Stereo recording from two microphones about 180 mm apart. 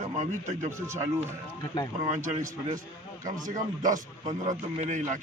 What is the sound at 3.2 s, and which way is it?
A man's voice, 45° right (ahead or behind).